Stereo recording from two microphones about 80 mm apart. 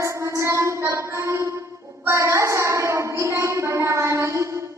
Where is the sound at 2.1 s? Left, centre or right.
Right.